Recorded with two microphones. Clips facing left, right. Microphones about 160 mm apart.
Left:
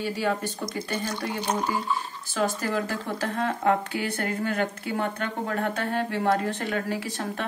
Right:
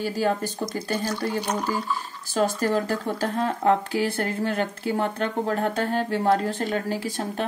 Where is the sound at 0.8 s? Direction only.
40° right (ahead or behind).